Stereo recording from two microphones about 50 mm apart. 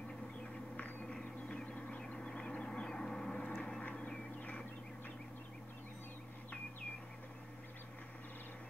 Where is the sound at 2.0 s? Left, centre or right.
Centre.